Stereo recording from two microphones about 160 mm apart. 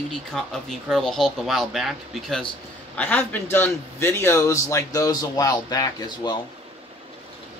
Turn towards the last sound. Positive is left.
turn(degrees=25)  # may be behind; listen again after turning